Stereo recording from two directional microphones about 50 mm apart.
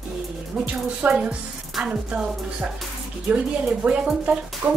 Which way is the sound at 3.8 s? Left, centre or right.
Right.